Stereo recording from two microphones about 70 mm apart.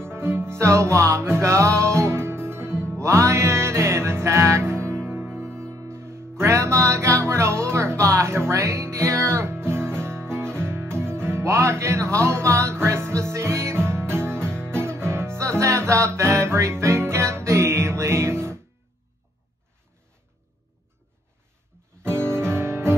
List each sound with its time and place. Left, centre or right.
0.0 s music: right
22.0 s music: right